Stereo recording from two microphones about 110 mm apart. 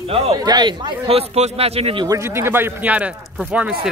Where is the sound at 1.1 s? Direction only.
75° right (ahead or behind).